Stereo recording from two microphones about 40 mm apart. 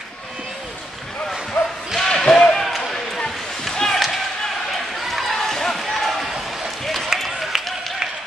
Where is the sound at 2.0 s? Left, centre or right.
Centre.